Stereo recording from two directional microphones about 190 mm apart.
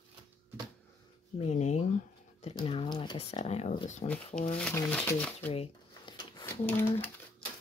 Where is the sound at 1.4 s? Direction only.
35° left (ahead or behind).